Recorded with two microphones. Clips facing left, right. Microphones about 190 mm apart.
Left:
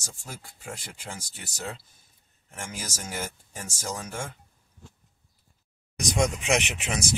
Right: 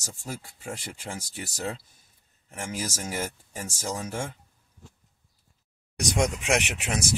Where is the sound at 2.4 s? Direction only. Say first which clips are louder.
Right 5 dB; 5° right (ahead or behind).